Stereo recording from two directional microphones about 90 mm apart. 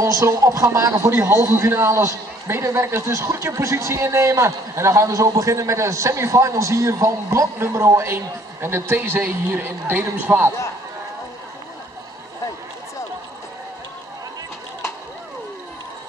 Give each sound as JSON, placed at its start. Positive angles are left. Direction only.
{"t": 0.0, "sound": "a man's voice", "side_deg": -35}